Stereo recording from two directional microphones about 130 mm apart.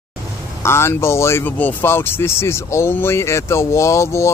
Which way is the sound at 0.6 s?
20° left (ahead or behind).